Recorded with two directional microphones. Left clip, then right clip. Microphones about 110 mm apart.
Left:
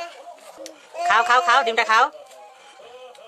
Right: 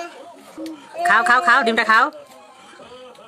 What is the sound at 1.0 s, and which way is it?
Speech, centre (ahead or behind).